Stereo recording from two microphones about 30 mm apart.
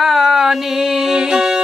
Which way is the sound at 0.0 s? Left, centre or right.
Centre.